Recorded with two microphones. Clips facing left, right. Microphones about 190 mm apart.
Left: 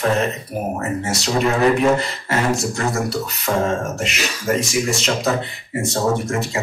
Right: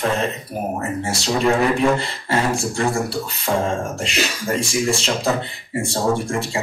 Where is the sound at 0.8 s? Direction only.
30° right (ahead or behind).